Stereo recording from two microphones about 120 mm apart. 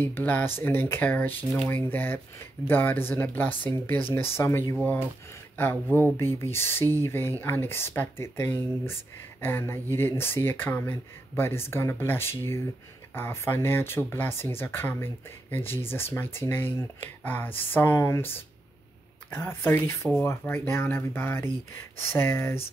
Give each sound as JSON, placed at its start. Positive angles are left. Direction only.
{"t": 0.0, "sound": "speech", "side_deg": 15}